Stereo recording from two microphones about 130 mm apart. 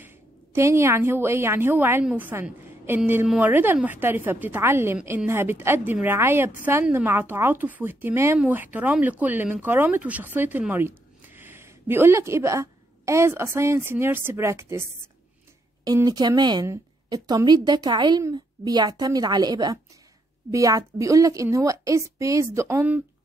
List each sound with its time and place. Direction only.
0.0 s a woman's voice: 20° right (ahead or behind)
15.8 s a woman's voice: 30° right (ahead or behind)